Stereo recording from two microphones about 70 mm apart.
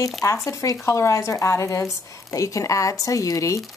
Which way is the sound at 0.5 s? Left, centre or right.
Left.